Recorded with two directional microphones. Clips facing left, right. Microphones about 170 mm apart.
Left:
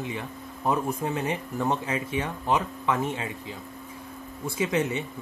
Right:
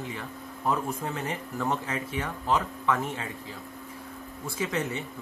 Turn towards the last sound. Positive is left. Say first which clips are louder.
# left 4 dB
turn(degrees=20)  # may be behind; listen again after turning